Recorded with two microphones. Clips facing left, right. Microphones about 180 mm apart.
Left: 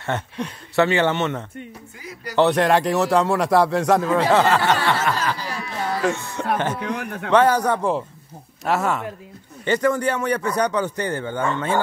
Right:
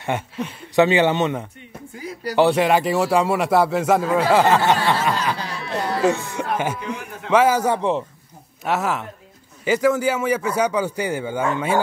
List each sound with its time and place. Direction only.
0.1 s speech: 10° right (ahead or behind)
5.4 s a sound: 65° right (ahead or behind)
6.0 s speech: 10° right (ahead or behind)
7.0 s a man's voice: 65° left (ahead or behind)
7.2 s speech: 5° right (ahead or behind)